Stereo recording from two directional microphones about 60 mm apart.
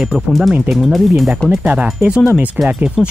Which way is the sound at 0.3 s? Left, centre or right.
Centre.